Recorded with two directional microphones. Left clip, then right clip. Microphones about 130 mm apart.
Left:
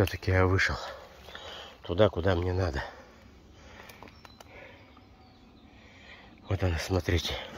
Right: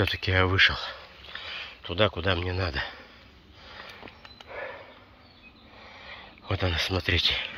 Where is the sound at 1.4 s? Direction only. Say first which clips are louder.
Right 7 dB; 80° left.